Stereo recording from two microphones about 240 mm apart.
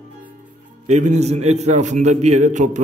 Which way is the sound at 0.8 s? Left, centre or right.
Right.